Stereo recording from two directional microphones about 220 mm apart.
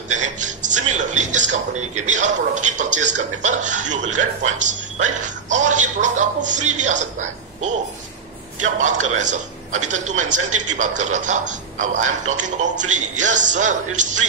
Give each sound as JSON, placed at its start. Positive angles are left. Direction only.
{"t": 0.1, "sound": "a man's voice", "side_deg": -35}